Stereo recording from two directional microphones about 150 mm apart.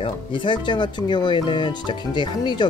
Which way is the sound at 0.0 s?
35° left (ahead or behind).